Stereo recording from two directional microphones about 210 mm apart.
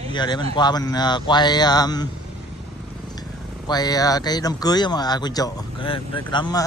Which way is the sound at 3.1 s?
20° left (ahead or behind).